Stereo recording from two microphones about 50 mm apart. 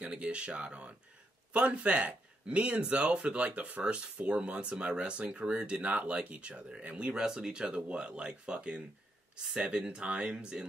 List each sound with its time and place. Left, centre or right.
0.0 s speech: right